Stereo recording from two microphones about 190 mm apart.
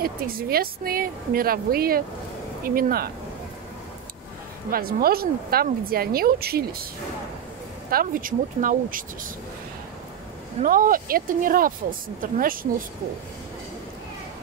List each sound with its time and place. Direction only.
0.0 s speech: 50° right (ahead or behind)
4.6 s speech: 50° right (ahead or behind)
7.9 s speech: 45° right (ahead or behind)
10.6 s speech: 45° right (ahead or behind)